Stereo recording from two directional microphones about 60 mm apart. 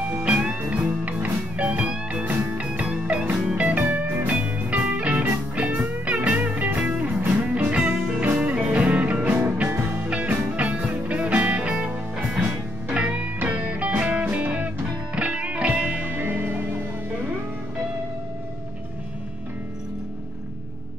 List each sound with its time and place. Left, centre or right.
0.1 s music: right
4.3 s music: right
16.1 s music: right